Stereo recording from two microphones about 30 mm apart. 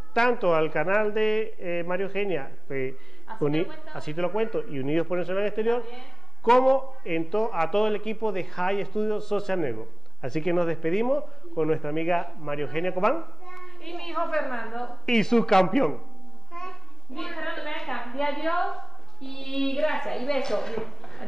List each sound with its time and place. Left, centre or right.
0.1 s a child's voice: centre